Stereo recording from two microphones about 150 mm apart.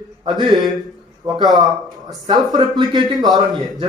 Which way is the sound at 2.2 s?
25° right (ahead or behind).